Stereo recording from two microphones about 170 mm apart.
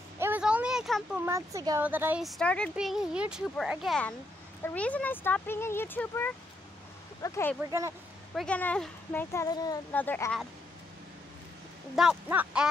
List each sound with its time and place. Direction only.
0.2 s a sound: 10° right (ahead or behind)
1.2 s a woman's voice: 20° right (ahead or behind)
2.2 s a child's voice: 5° left (ahead or behind); by 9.8 s 20° left (ahead or behind)
9.9 s speech: 10° left (ahead or behind)
11.9 s a child's voice: 5° right (ahead or behind)